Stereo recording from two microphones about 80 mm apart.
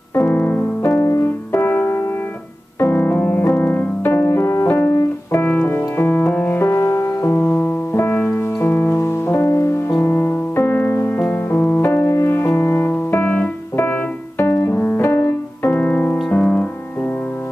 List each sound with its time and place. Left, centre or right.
0.1 s music: left
0.9 s music: left
14.4 s piano: left
15.0 s music: left
15.7 s music: left